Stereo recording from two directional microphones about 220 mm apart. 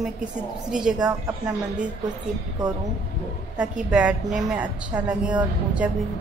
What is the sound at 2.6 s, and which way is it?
Speech, 20° right (ahead or behind).